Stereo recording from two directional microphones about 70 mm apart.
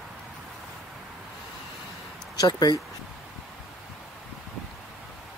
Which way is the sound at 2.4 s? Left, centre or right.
Left.